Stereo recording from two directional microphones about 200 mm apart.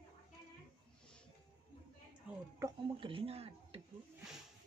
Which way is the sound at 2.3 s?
5° right (ahead or behind).